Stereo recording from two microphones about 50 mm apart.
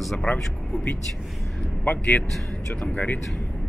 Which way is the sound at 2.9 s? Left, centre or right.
Left.